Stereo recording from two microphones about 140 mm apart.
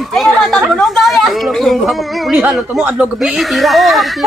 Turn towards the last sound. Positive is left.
turn(degrees=0)  # may be behind; listen again after turning